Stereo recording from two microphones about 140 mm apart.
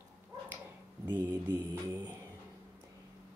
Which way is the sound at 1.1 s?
15° right (ahead or behind).